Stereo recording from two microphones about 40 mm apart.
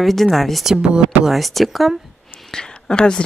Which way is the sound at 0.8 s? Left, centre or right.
Right.